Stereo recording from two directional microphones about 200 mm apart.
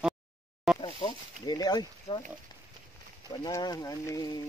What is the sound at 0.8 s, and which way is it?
Speech, 25° left (ahead or behind).